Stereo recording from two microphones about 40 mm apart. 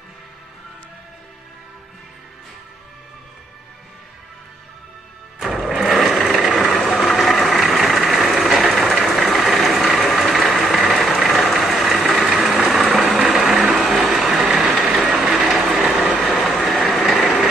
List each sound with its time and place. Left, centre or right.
5.4 s sewing machine: centre
7.1 s a sound: centre
7.7 s vehicle: centre
14.9 s train: right
15.2 s vehicle: centre
16.2 s train: centre